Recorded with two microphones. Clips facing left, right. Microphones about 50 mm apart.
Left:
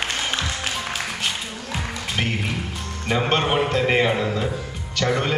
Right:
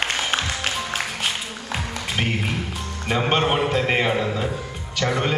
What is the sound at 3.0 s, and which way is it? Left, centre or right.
A man's voice, centre.